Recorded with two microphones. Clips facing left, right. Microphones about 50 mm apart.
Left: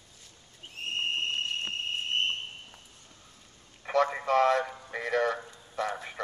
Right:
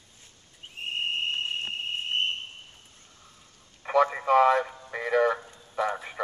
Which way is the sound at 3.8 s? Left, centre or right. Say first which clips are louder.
Right 4 dB; centre.